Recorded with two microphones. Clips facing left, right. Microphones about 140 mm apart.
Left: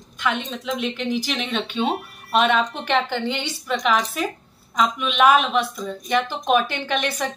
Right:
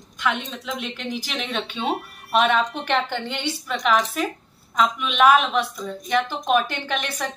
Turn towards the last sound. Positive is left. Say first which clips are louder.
# left 3 dB
turn(degrees=0)  # may be behind; listen again after turning